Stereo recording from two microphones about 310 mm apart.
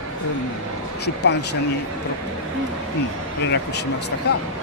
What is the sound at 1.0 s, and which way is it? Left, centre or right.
Speech, left.